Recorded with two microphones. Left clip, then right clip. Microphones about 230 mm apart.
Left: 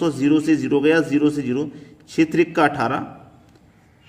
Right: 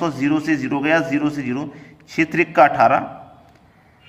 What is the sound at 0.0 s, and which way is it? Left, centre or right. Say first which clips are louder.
A man's voice: left 2 dB; centre.